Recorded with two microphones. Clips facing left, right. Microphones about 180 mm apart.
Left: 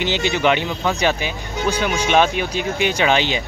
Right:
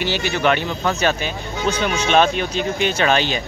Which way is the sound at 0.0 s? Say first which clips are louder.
Left 1 dB; 20° left (ahead or behind).